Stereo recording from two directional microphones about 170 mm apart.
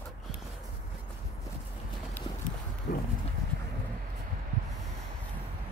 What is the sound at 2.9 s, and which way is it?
Horse, 70° left (ahead or behind).